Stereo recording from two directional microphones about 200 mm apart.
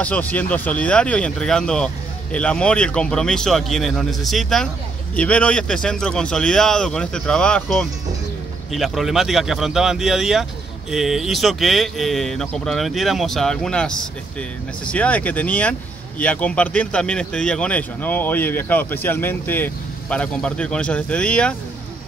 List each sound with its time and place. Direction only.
0.0 s speech: 5° left (ahead or behind)